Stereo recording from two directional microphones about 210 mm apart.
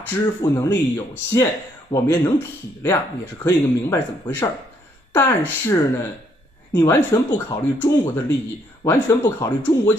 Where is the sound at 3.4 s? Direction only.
10° left (ahead or behind).